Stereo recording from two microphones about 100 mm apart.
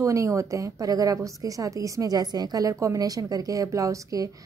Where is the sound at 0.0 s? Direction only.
30° right (ahead or behind).